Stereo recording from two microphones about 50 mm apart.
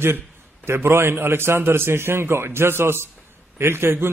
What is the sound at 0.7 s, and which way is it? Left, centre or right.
A man's voice, right.